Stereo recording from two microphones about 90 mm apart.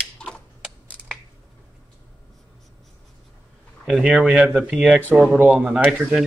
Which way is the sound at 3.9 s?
5° right (ahead or behind).